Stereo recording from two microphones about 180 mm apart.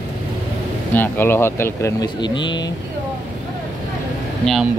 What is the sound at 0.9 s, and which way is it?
Speech, 10° left (ahead or behind).